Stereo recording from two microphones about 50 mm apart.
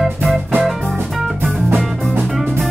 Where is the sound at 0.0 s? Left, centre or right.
Centre.